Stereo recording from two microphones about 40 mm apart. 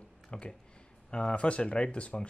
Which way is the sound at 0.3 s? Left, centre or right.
Left.